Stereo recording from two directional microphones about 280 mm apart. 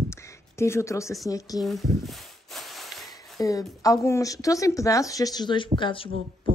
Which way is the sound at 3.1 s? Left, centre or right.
Centre.